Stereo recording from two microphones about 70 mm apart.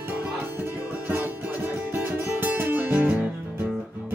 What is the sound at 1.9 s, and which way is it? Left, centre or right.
Music, right.